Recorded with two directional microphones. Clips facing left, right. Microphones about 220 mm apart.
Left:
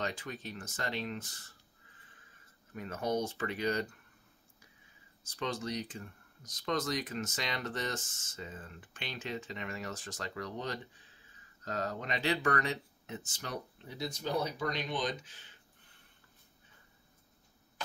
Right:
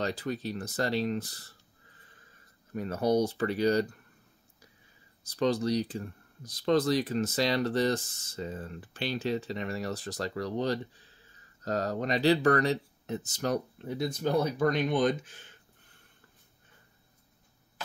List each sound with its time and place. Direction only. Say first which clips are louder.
0.0 s speech: right 7 dB; 35° right (ahead or behind)
2.7 s speech: right 7 dB; 35° right (ahead or behind)
5.3 s speech: right 10 dB; 35° right (ahead or behind)